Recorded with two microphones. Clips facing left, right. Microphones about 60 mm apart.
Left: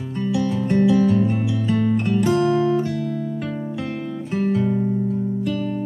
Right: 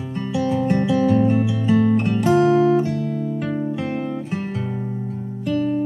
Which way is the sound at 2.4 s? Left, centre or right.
Centre.